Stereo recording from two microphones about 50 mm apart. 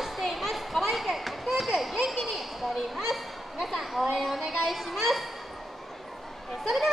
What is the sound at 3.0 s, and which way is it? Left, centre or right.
Children playing, centre.